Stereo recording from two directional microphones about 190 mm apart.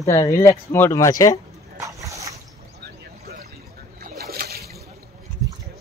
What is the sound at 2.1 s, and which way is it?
Boat, 15° right (ahead or behind).